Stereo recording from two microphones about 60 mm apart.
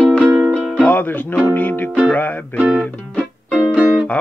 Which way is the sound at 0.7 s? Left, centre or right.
Left.